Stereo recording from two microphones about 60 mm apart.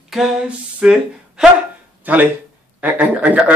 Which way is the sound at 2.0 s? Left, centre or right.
Right.